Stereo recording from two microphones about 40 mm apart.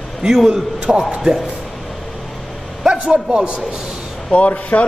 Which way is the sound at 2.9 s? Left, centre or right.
Right.